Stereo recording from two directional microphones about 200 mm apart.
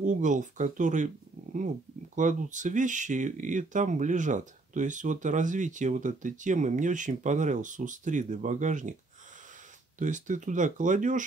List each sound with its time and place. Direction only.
0.0 s speech: 40° right (ahead or behind)
9.9 s speech: 40° right (ahead or behind)